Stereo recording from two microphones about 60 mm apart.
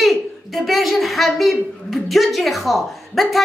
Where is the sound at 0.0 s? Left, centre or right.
Centre.